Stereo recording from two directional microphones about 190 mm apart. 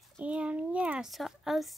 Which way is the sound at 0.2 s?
5° right (ahead or behind).